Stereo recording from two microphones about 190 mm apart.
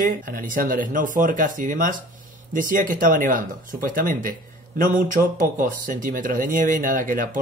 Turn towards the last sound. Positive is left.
turn(degrees=-45)  # may be behind; listen again after turning